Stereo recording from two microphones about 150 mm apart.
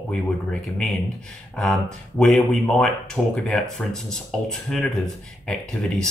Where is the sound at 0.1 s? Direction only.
5° left (ahead or behind).